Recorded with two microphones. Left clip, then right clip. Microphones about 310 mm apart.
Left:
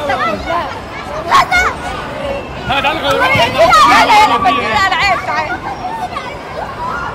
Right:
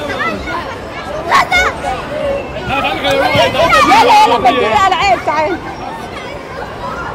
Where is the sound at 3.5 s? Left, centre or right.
Centre.